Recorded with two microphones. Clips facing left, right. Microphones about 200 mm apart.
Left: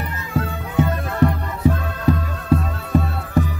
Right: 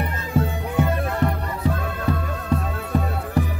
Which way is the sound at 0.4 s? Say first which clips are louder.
Left 1 dB; 20° right (ahead or behind).